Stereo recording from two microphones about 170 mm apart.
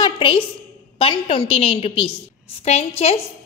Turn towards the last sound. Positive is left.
turn(degrees=35)  # may be behind; listen again after turning